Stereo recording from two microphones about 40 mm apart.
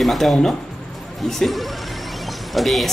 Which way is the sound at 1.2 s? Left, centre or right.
Centre.